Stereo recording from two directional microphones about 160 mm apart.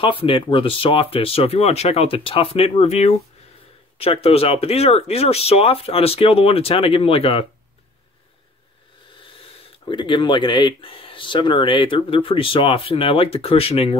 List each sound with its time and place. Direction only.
0.0 s speech: 35° left (ahead or behind)
9.8 s speech: 30° left (ahead or behind)